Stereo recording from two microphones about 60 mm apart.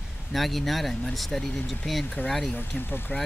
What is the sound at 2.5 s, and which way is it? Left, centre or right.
Speech, left.